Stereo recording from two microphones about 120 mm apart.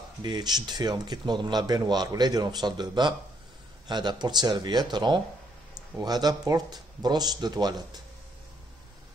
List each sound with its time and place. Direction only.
0.2 s speech: 35° right (ahead or behind)